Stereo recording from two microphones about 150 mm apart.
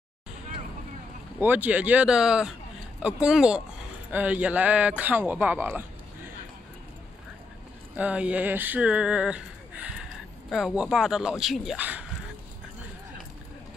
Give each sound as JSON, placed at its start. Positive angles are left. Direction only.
{"t": 1.4, "sound": "a man's voice", "side_deg": -10}
{"t": 7.9, "sound": "a sound", "side_deg": -10}
{"t": 10.5, "sound": "speech", "side_deg": -5}